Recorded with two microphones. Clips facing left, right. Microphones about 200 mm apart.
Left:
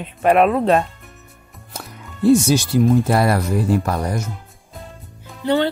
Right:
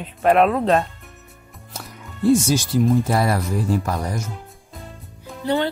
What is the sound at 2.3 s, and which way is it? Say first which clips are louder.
Speech: left 3 dB; 65° left (ahead or behind).